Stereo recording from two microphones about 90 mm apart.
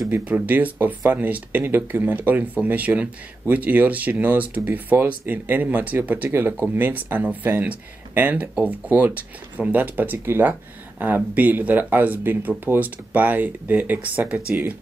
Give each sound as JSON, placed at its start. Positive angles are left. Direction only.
{"t": 0.2, "sound": "speech", "side_deg": -15}